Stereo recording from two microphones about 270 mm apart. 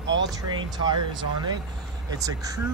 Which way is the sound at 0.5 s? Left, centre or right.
Centre.